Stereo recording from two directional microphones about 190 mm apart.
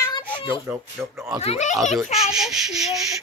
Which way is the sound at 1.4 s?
35° left (ahead or behind).